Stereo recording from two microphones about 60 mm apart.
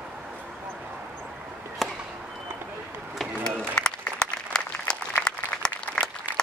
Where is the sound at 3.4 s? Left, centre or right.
Centre.